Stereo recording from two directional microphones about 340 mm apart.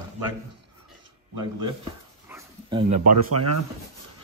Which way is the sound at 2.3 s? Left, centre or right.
Centre.